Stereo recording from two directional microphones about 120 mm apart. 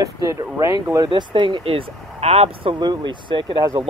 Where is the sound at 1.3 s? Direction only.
45° right (ahead or behind); by 2.7 s 60° right (ahead or behind).